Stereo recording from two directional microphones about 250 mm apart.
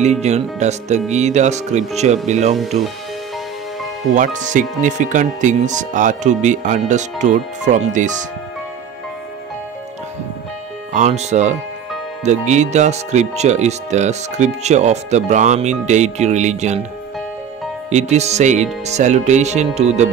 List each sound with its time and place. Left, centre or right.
0.0 s speech: right
4.1 s speech: right
10.9 s speech: right
17.8 s speech: right